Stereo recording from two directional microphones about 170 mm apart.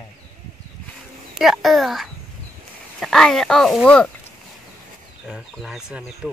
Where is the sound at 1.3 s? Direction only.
Centre (ahead or behind).